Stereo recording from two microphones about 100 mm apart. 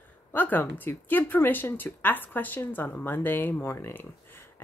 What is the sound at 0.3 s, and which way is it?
Speech, 20° left (ahead or behind).